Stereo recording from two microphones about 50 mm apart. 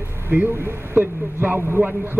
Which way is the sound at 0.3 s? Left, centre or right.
Right.